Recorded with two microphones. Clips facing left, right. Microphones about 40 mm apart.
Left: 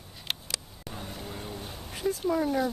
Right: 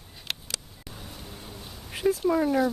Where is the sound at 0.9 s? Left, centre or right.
Centre.